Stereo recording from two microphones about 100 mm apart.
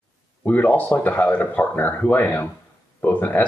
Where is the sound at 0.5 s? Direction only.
15° left (ahead or behind).